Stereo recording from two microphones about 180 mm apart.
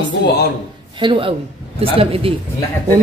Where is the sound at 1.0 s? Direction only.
30° right (ahead or behind).